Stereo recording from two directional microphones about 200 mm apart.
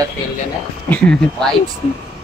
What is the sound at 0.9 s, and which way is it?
Speech, 5° left (ahead or behind).